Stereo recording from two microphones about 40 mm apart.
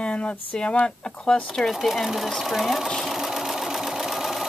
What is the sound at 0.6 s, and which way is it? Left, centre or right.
Speech, left.